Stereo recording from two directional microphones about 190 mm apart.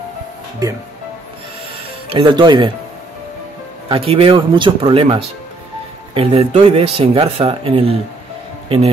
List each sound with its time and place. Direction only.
0.6 s speech: 20° right (ahead or behind)
2.0 s speech: 25° right (ahead or behind)
3.9 s a man's voice: 30° right (ahead or behind)